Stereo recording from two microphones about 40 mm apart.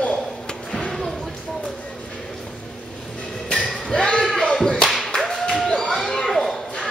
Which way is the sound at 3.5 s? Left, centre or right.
Centre.